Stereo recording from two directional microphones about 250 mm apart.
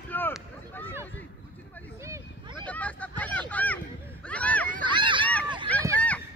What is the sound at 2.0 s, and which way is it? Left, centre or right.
Vehicle, centre.